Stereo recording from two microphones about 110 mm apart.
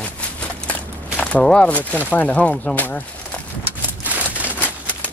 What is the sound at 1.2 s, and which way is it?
Speech, 10° left (ahead or behind).